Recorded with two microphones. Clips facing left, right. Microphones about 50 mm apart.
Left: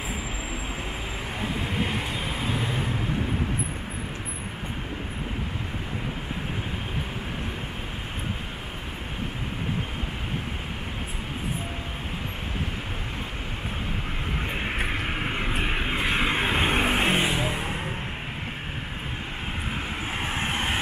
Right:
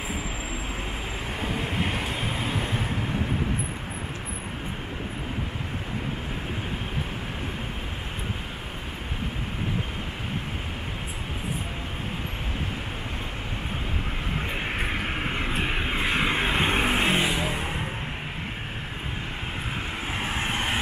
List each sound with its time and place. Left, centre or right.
1.4 s vehicle: centre
2.4 s vehicle: right
14.5 s vehicle: centre
20.2 s vehicle: centre